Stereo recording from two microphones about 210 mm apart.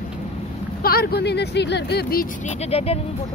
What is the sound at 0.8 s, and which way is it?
Speech, 50° left (ahead or behind).